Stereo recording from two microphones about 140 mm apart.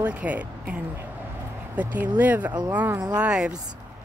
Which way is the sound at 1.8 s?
10° right (ahead or behind).